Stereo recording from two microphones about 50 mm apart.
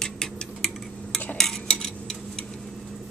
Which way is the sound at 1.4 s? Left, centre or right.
Centre.